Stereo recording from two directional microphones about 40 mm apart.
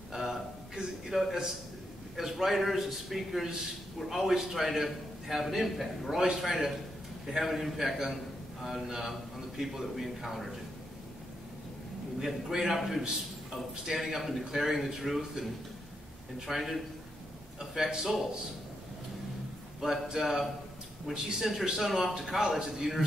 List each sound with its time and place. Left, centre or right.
0.1 s a sound: centre
2.1 s a man's voice: centre
12.2 s a man's voice: centre
16.4 s a man's voice: centre
17.6 s a man's voice: centre
19.8 s a man's voice: centre
21.6 s a man's voice: centre
22.8 s a man's voice: centre